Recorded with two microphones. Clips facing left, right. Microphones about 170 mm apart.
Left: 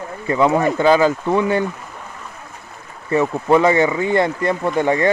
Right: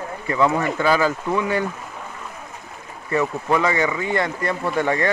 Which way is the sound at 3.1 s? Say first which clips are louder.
Left 5 dB; 25° left (ahead or behind).